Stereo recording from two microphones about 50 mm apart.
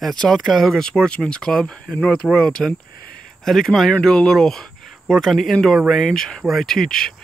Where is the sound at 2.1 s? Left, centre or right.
Left.